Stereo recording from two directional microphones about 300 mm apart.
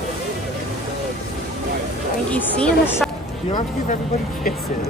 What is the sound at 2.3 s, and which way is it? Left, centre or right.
Speech, centre.